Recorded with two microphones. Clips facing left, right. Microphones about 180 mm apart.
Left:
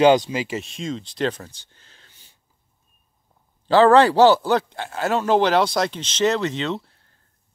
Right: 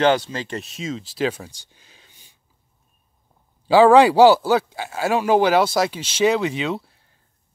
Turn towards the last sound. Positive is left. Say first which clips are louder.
# right 1 dB
turn(degrees=-10)  # may be behind; listen again after turning